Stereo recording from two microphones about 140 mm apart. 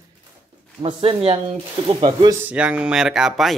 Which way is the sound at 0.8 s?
40° right (ahead or behind).